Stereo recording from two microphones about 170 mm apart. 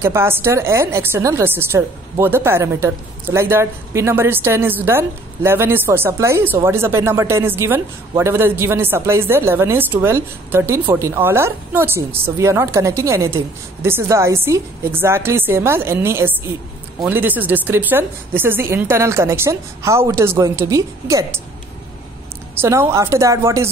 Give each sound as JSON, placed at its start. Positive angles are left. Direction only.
{"t": 0.0, "sound": "a woman's voice", "side_deg": -15}
{"t": 22.6, "sound": "a woman's voice", "side_deg": -15}